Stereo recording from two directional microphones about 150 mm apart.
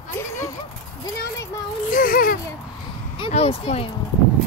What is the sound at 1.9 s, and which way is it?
Speech, 70° left (ahead or behind).